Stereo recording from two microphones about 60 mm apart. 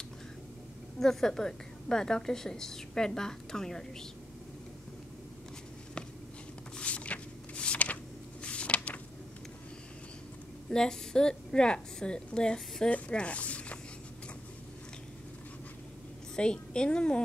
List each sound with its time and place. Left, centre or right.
0.9 s a woman's voice: centre
6.8 s a sound: left
10.7 s a woman's voice: centre
16.3 s a woman's voice: centre